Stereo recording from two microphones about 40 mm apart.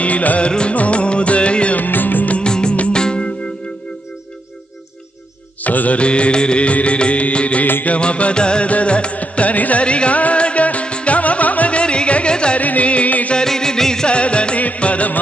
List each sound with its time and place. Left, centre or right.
0.0 s music: left
0.4 s music: left
1.8 s music: left
2.3 s music: left
5.6 s music: left
5.9 s music: left
7.6 s music: left
7.9 s music: left
12.5 s carnatic music: left
13.5 s music: centre
14.1 s music: left